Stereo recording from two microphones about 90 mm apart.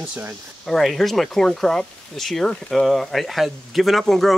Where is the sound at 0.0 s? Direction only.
20° right (ahead or behind).